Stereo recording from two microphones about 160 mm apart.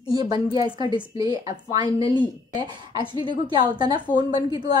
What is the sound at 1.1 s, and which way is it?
A woman's voice, 25° right (ahead or behind).